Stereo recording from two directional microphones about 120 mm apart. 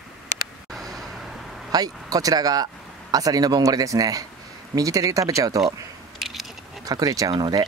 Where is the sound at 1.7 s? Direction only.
30° right (ahead or behind).